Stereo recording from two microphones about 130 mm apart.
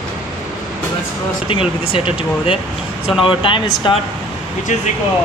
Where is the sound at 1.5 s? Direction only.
45° left (ahead or behind).